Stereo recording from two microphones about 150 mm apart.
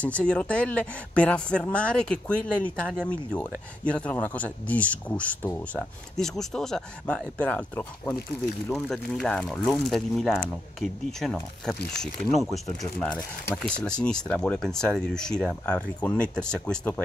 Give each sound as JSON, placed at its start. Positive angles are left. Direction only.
{"t": 0.0, "sound": "speech", "side_deg": 10}
{"t": 13.6, "sound": "speech", "side_deg": 5}